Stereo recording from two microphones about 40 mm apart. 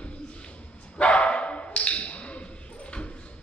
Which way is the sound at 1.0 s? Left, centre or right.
Left.